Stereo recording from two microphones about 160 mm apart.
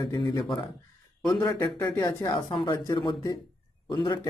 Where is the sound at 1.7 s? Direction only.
15° left (ahead or behind).